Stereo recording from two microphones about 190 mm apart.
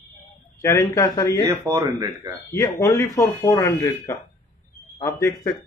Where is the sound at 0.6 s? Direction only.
15° left (ahead or behind).